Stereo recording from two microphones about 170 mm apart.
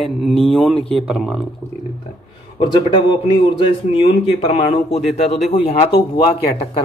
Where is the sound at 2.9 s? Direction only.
30° left (ahead or behind).